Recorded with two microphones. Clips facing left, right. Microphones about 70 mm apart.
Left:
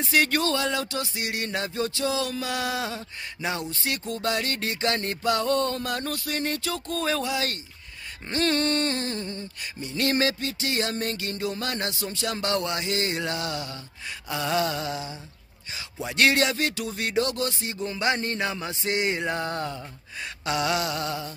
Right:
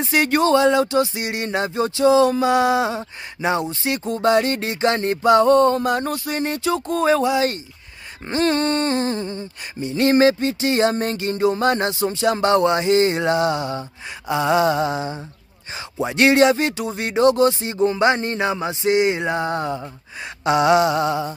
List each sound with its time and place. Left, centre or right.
0.0 s speech: right